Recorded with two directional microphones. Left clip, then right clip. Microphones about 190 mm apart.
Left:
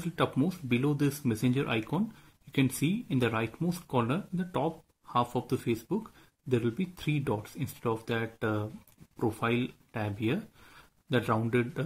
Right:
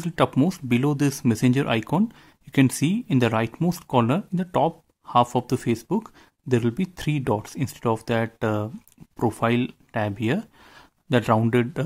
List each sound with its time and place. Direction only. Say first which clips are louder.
0.0 s speech: right 8 dB; 40° right (ahead or behind)